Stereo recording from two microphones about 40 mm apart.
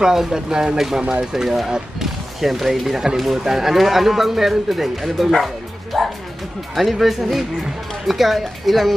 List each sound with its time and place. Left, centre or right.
0.0 s a man's voice: centre